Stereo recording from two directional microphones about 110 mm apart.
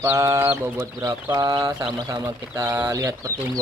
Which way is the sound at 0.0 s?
25° right (ahead or behind).